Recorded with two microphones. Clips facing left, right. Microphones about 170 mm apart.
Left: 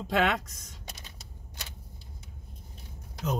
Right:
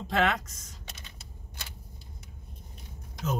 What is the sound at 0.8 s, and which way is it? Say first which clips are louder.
Typewriter: left 3 dB; 40° left (ahead or behind).